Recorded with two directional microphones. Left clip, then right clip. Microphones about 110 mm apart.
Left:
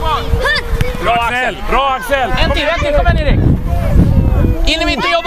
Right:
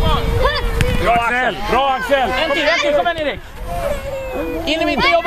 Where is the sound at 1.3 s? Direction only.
50° left (ahead or behind); by 3.3 s 30° left (ahead or behind).